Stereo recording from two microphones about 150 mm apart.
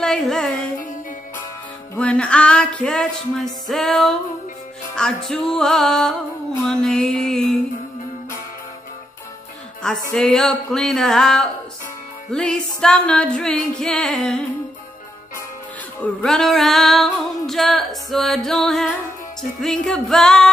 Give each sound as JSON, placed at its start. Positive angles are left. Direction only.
{"t": 0.0, "sound": "music", "side_deg": 5}
{"t": 2.0, "sound": "a sound", "side_deg": 5}
{"t": 3.6, "sound": "music", "side_deg": 0}
{"t": 10.1, "sound": "music", "side_deg": 5}
{"t": 16.0, "sound": "music", "side_deg": 5}